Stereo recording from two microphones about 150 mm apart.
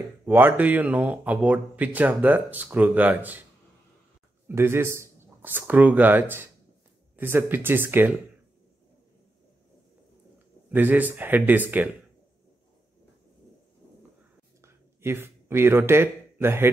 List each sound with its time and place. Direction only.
0.2 s speech: 15° right (ahead or behind)
4.5 s speech: 15° right (ahead or behind)
10.7 s speech: 10° right (ahead or behind)
14.6 s a sound: 15° right (ahead or behind)